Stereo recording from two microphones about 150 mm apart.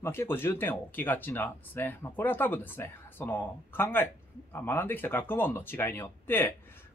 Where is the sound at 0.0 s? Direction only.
15° left (ahead or behind).